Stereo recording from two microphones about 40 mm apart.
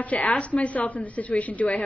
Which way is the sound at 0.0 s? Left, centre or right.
Left.